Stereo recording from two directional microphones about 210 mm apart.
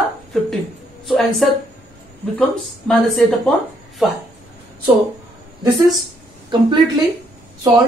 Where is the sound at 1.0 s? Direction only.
Centre (ahead or behind).